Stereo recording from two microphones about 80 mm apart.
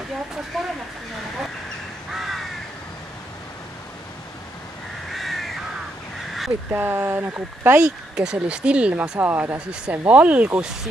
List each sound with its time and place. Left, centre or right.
0.5 s speech: centre
2.1 s crow: centre
5.1 s crow: centre
6.7 s speech: right
7.8 s speech: centre
9.2 s speech: right